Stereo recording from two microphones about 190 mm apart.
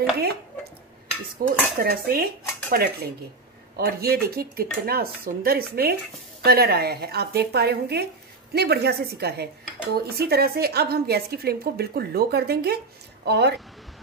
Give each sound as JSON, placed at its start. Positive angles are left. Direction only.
{"t": 1.4, "sound": "cutlery", "side_deg": -50}
{"t": 6.4, "sound": "a woman's voice", "side_deg": -55}